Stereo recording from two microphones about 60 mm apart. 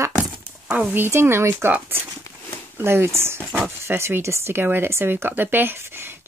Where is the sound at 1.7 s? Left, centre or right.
Right.